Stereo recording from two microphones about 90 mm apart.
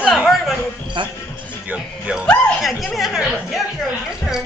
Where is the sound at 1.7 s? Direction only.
15° right (ahead or behind).